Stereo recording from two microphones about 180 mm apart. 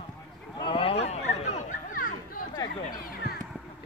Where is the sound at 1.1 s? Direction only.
35° left (ahead or behind).